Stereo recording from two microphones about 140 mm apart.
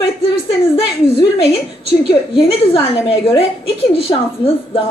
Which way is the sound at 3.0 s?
40° left (ahead or behind).